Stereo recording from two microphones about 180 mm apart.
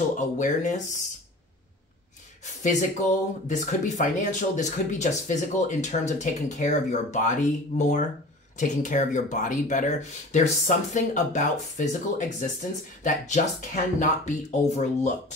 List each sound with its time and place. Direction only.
0.1 s speech: 45° left (ahead or behind)
2.6 s speech: 45° left (ahead or behind)